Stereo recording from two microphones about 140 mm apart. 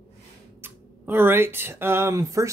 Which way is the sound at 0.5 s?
15° right (ahead or behind).